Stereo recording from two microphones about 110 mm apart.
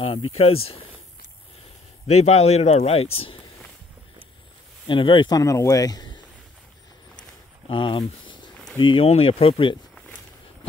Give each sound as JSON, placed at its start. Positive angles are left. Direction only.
{"t": 0.0, "sound": "speech", "side_deg": 65}
{"t": 2.0, "sound": "speech", "side_deg": 85}
{"t": 4.8, "sound": "speech", "side_deg": 50}
{"t": 5.3, "sound": "speech", "side_deg": 30}
{"t": 7.6, "sound": "speech", "side_deg": 50}
{"t": 9.9, "sound": "a sound", "side_deg": 10}